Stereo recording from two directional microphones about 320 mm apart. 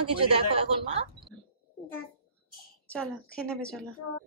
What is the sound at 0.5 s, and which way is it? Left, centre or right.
Speech, centre.